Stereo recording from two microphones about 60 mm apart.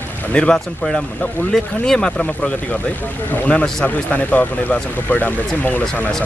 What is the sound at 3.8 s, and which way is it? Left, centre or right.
Speech, left.